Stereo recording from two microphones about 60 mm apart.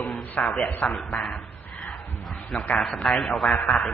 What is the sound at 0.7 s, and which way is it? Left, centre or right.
Speech, left.